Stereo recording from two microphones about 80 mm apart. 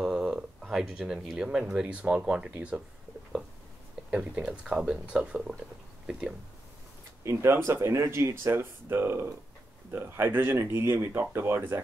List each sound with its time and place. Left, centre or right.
0.0 s speech: centre
4.1 s speech: centre
7.2 s speech: right